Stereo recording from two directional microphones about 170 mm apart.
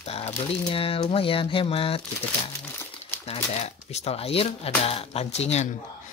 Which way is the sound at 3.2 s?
35° left (ahead or behind).